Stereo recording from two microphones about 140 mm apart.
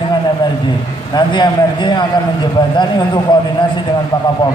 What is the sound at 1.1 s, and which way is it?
A man's voice, 35° left (ahead or behind).